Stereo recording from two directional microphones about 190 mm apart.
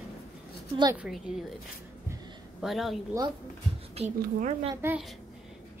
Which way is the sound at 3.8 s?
35° right (ahead or behind).